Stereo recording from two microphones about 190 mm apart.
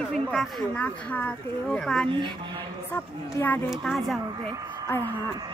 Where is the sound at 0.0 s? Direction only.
5° left (ahead or behind).